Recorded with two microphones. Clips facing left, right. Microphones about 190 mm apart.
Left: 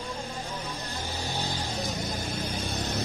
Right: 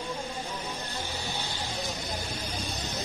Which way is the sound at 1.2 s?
35° left (ahead or behind).